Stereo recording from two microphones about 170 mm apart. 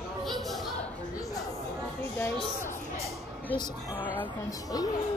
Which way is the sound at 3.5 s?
25° left (ahead or behind).